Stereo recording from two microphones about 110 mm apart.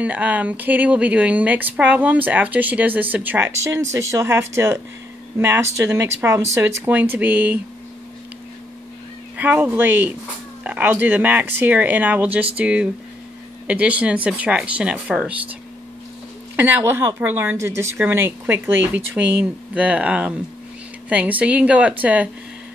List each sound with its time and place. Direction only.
0.0 s speech: 15° right (ahead or behind)
9.4 s speech: 15° right (ahead or behind)
16.5 s speech: 15° right (ahead or behind)